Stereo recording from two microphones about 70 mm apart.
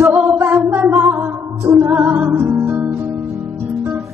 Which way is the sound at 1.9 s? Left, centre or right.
Right.